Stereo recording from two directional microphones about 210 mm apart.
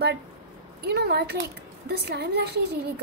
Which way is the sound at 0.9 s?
50° right (ahead or behind).